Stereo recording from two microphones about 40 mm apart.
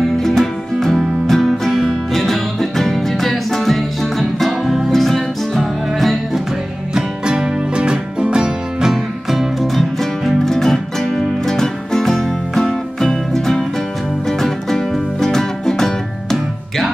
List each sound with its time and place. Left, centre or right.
0.0 s music: centre
6.9 s music: centre
8.9 s music: centre